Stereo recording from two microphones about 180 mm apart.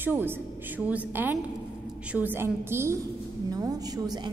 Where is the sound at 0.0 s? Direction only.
10° right (ahead or behind).